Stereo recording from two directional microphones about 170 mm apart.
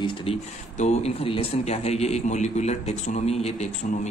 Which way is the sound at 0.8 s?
40° left (ahead or behind).